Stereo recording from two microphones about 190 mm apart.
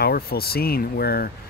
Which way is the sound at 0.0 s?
55° left (ahead or behind).